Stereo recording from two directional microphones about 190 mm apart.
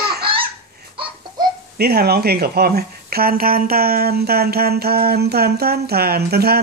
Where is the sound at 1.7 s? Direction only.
55° right (ahead or behind).